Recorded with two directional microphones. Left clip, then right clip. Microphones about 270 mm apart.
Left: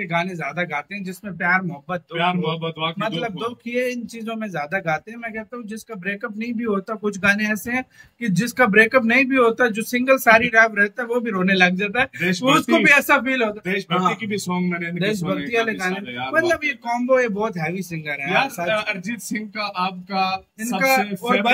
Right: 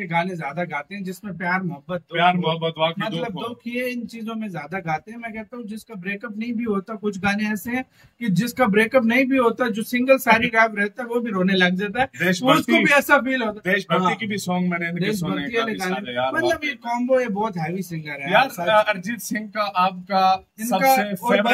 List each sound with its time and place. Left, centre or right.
0.0 s speech: centre
2.1 s speech: centre
3.0 s speech: centre
6.0 s speech: centre
12.2 s speech: centre
12.5 s speech: centre
13.7 s speech: centre
15.4 s speech: centre
18.3 s speech: centre